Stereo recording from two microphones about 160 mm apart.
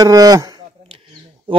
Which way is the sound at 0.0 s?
25° right (ahead or behind).